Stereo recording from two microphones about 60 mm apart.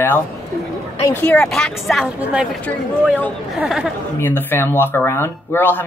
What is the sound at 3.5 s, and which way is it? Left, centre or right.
Speech, centre.